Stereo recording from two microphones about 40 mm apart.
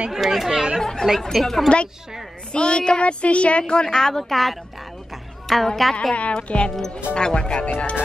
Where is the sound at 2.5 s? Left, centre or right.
Left; by 5.6 s centre.